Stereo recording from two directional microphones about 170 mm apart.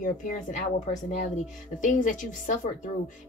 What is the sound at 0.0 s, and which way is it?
A woman's voice, 50° left (ahead or behind).